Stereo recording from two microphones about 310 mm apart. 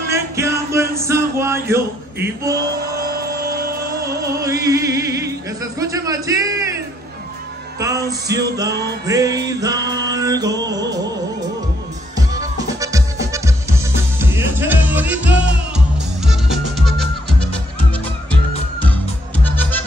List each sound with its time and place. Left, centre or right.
0.1 s music: centre
3.1 s a sound: right
4.4 s speech: centre
8.3 s music: centre
9.5 s mantra: centre
12.2 s music: centre
18.8 s music: centre